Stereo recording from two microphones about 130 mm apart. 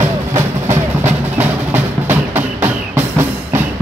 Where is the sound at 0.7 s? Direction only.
15° right (ahead or behind).